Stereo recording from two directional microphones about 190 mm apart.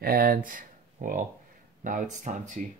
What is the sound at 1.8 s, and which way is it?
Speech, 40° right (ahead or behind).